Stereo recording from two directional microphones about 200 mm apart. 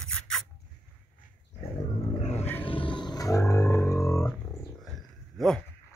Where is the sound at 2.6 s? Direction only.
25° left (ahead or behind).